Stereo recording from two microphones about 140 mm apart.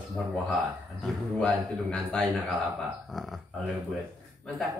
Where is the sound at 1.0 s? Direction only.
5° left (ahead or behind).